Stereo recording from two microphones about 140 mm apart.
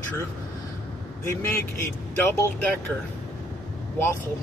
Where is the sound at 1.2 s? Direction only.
20° left (ahead or behind).